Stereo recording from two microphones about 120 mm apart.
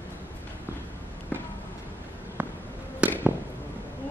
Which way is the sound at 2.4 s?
15° right (ahead or behind).